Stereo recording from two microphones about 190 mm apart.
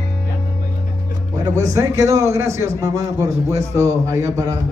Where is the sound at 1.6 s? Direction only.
15° right (ahead or behind).